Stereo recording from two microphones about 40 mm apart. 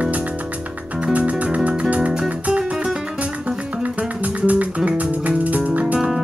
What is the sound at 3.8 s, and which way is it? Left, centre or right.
Music, right.